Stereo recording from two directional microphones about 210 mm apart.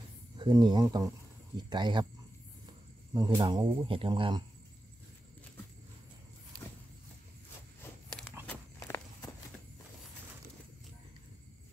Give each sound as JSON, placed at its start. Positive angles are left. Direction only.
{"t": 0.4, "sound": "speech", "side_deg": -20}
{"t": 3.1, "sound": "speech", "side_deg": -20}
{"t": 8.5, "sound": "walk", "side_deg": 10}